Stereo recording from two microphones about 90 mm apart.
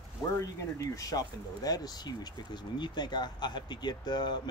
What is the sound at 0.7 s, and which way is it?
A man's voice, 40° left (ahead or behind).